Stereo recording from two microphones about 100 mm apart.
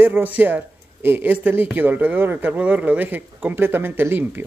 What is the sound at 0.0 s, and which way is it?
Speech, 20° right (ahead or behind).